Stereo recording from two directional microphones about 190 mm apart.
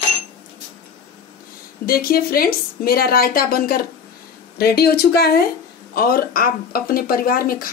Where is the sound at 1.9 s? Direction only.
50° left (ahead or behind).